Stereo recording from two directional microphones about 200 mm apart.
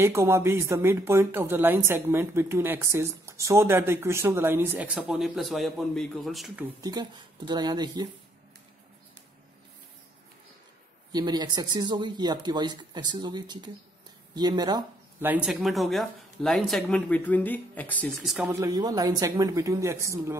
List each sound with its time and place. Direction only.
0.0 s a woman's voice: 15° right (ahead or behind)
6.8 s speech: 20° right (ahead or behind)
11.1 s speech: 20° right (ahead or behind)
15.2 s speech: 5° right (ahead or behind)
18.5 s a woman's voice: 15° right (ahead or behind)